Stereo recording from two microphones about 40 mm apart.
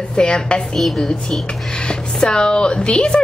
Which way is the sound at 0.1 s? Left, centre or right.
Left.